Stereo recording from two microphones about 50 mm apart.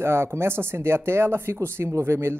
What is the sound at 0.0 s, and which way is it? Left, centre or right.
Speech, right.